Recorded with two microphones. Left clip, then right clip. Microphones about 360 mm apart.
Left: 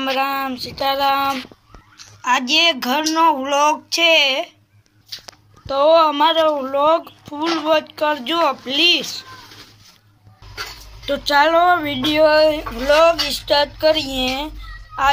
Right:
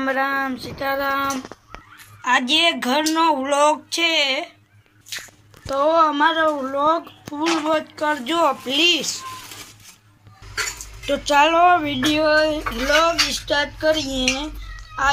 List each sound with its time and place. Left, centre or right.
0.0 s speech: centre
1.5 s a sound: right
2.2 s speech: centre
5.7 s speech: centre
11.1 s speech: centre
14.3 s fowl: centre